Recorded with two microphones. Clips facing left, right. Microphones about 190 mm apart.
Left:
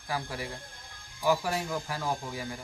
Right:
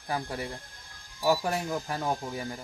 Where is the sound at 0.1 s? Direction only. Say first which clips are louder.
Right 2 dB; 25° right (ahead or behind).